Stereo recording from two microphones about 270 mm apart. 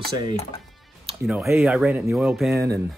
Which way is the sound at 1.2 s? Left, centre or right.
Centre.